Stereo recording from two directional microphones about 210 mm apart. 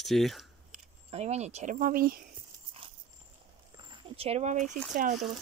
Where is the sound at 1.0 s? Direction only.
30° right (ahead or behind).